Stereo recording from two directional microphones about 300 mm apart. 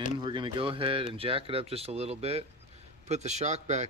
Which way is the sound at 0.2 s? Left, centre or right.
Centre.